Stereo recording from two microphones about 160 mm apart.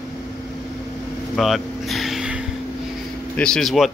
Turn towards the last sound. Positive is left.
turn(degrees=0)  # may be behind; listen again after turning